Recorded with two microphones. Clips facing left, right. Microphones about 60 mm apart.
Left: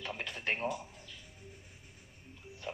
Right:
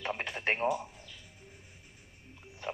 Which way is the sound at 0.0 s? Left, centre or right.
Right.